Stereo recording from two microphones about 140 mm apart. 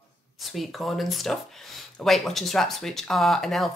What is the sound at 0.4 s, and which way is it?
Speech, centre (ahead or behind).